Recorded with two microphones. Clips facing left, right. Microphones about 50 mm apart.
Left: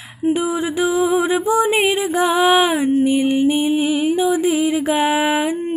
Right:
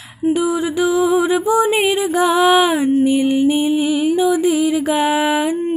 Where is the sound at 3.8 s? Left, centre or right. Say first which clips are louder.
Right 1 dB; left.